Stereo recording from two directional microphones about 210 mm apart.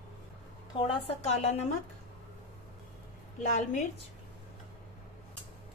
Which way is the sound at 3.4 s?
35° left (ahead or behind).